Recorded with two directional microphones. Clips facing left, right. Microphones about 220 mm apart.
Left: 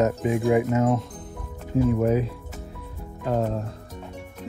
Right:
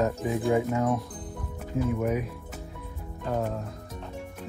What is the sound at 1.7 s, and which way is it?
Speech, 35° left (ahead or behind).